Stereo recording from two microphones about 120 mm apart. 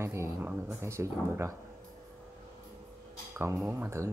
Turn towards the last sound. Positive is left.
turn(degrees=-20)  # may be behind; listen again after turning